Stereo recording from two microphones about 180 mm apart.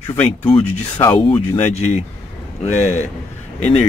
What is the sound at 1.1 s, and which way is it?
Speech, 30° left (ahead or behind).